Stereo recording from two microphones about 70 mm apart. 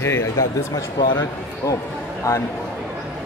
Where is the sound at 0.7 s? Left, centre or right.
Left.